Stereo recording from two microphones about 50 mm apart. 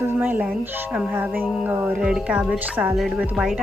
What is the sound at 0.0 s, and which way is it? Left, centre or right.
Music, right.